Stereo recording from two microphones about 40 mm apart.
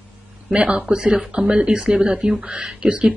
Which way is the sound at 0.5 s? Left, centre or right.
Right.